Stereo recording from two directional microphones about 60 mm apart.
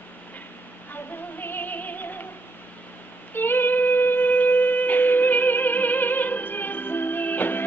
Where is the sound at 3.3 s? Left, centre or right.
Left.